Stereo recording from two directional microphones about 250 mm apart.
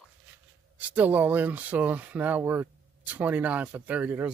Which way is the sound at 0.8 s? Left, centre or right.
Centre.